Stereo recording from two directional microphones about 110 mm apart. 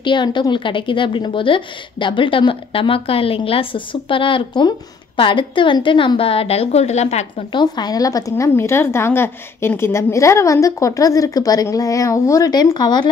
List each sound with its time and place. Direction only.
0.0 s a woman's voice: 45° left (ahead or behind); by 7.4 s 80° left
7.5 s a woman's voice: 40° left (ahead or behind)